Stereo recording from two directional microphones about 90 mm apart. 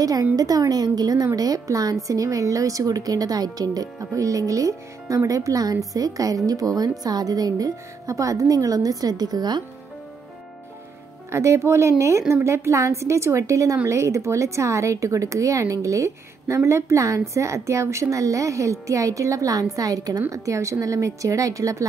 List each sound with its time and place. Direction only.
0.0 s speech: 40° right (ahead or behind)
11.3 s speech: 30° right (ahead or behind)